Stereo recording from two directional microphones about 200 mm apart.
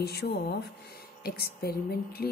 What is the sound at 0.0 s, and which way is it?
Speech, 55° left (ahead or behind).